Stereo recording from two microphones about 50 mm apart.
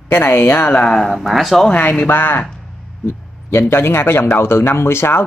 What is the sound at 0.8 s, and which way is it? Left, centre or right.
Speech, centre.